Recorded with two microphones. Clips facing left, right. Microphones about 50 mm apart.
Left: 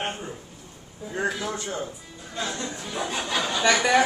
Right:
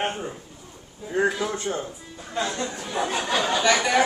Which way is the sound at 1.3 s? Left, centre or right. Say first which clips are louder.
Right 3 dB; centre.